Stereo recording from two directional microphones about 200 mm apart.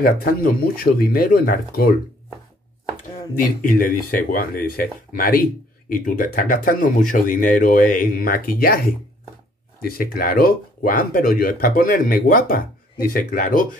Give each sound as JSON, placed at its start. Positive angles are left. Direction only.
{"t": 0.0, "sound": "speech", "side_deg": 45}
{"t": 3.3, "sound": "speech", "side_deg": 45}